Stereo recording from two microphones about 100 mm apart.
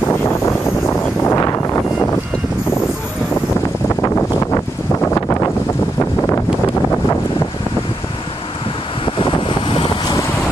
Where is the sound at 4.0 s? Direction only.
30° left (ahead or behind).